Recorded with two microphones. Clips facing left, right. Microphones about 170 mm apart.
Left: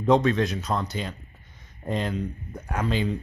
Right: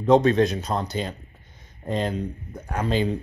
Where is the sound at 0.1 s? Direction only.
40° right (ahead or behind).